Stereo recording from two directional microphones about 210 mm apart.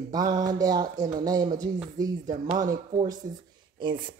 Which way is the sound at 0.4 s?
20° right (ahead or behind).